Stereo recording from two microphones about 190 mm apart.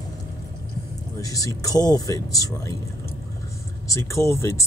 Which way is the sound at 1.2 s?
20° left (ahead or behind).